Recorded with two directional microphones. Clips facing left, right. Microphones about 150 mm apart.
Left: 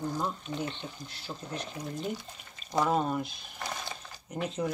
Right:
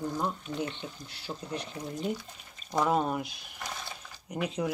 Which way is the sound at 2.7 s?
5° right (ahead or behind).